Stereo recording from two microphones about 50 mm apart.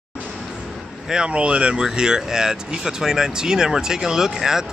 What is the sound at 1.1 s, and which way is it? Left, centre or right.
Speech, centre.